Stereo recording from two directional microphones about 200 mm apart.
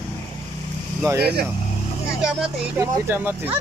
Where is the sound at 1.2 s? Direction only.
55° right (ahead or behind).